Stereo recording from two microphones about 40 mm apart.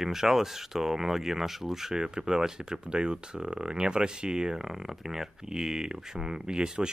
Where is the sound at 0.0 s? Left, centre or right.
Centre.